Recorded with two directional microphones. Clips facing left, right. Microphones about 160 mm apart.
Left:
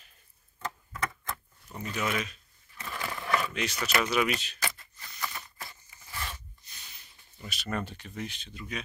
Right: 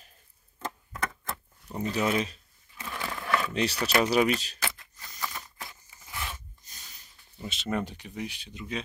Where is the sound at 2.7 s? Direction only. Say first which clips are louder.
Right 1 dB; centre (ahead or behind).